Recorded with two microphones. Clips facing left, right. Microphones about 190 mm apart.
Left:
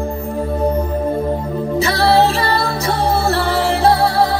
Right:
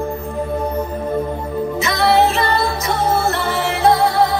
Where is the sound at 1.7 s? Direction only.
35° left (ahead or behind).